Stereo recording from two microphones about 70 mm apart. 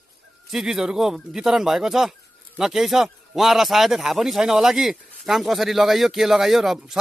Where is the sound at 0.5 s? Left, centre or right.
Centre.